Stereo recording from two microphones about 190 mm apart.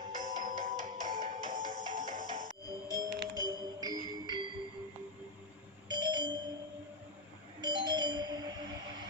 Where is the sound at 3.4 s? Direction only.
20° right (ahead or behind).